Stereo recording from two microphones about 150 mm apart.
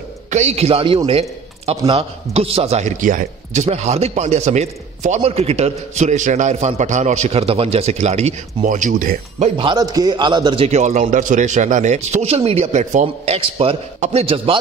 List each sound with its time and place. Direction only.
0.3 s a man's voice: 45° right (ahead or behind)
9.6 s a man's voice: 30° right (ahead or behind)
13.9 s a man's voice: 50° right (ahead or behind)
14.2 s a man's voice: 35° right (ahead or behind)